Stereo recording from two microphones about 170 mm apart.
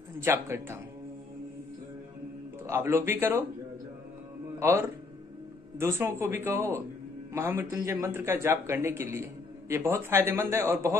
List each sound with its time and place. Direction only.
0.2 s a man's voice: 15° right (ahead or behind)
2.6 s a man's voice: 15° right (ahead or behind)
4.6 s a man's voice: 15° right (ahead or behind)